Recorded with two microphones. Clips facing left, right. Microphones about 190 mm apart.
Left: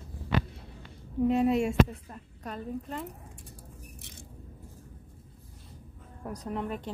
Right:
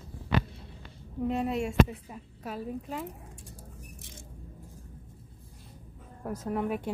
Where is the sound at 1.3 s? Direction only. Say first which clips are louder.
Left 5 dB; centre (ahead or behind).